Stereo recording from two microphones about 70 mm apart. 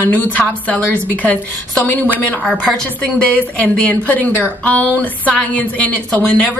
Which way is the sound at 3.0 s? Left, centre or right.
Left.